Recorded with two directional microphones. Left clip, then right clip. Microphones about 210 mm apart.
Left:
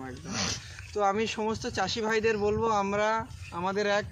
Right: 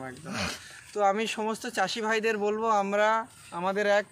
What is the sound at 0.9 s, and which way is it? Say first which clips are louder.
Speech: right 1 dB; 15° right (ahead or behind).